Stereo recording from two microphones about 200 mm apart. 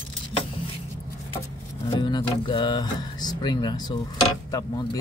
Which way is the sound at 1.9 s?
25° left (ahead or behind).